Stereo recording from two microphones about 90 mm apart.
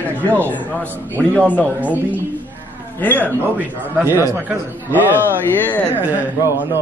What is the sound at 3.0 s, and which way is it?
Speech, 20° left (ahead or behind).